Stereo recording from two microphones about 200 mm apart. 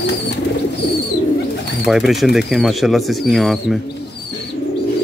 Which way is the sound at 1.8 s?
Centre (ahead or behind).